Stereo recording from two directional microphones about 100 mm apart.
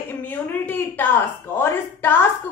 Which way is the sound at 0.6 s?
20° left (ahead or behind).